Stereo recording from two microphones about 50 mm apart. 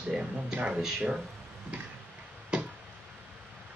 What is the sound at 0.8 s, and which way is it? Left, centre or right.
Speech, centre.